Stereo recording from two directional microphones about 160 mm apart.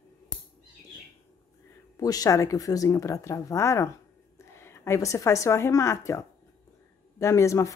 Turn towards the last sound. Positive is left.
turn(degrees=20)  # may be behind; listen again after turning